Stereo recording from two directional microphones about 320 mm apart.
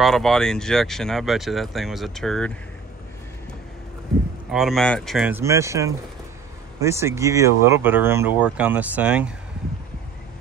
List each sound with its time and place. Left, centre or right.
0.0 s speech: centre
4.5 s speech: centre